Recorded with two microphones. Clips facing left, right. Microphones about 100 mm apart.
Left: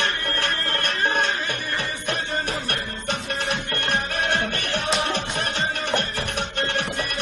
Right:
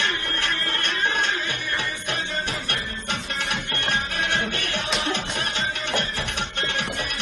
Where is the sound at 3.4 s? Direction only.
55° left (ahead or behind).